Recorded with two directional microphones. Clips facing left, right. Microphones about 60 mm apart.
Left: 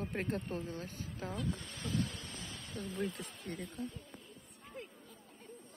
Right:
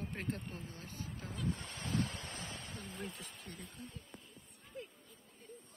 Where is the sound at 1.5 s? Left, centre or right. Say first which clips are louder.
Even; right.